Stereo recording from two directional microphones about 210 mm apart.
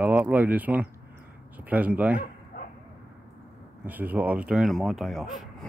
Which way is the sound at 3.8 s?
10° right (ahead or behind).